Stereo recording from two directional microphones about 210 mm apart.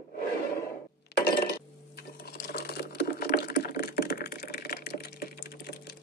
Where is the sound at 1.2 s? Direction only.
45° left (ahead or behind).